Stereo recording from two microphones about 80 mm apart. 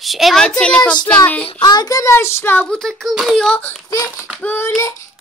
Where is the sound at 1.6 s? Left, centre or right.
Left.